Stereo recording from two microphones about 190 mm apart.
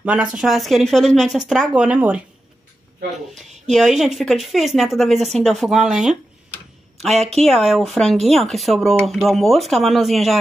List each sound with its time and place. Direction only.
0.0 s speech: 5° right (ahead or behind)
3.4 s a sound: 35° right (ahead or behind)
3.7 s a woman's voice: centre (ahead or behind)